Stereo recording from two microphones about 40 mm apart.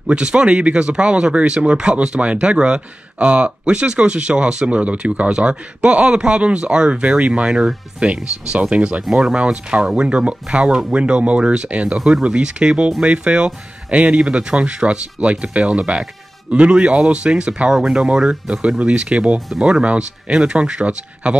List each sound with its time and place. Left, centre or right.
0.1 s speech: right
7.4 s speech: centre
8.0 s speech: right
17.7 s speech: centre
18.8 s speech: right